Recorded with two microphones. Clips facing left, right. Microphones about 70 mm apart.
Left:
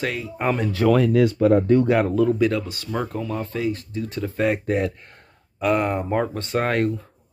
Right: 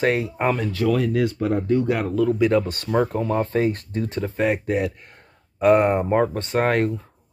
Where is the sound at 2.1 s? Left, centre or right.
Centre.